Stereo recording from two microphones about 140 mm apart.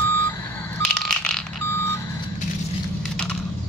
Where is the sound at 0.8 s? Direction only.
5° left (ahead or behind).